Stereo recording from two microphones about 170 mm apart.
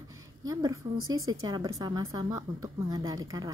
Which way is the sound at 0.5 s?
20° right (ahead or behind).